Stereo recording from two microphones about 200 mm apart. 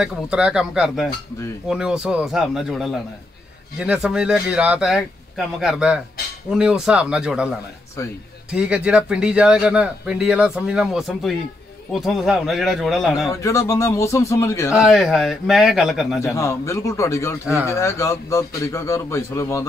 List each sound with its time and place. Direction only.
0.0 s speech: 5° right (ahead or behind)
8.5 s speech: 5° right (ahead or behind)
13.3 s a man's voice: 15° left (ahead or behind)
14.8 s speech: centre (ahead or behind)
16.2 s a man's voice: 15° left (ahead or behind)